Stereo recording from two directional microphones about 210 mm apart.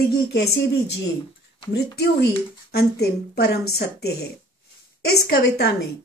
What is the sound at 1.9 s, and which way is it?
A woman's voice, 50° left (ahead or behind).